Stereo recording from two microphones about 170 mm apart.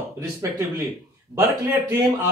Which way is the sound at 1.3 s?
15° right (ahead or behind).